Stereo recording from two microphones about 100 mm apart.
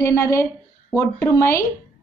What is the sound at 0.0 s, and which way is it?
A woman's voice, 30° left (ahead or behind).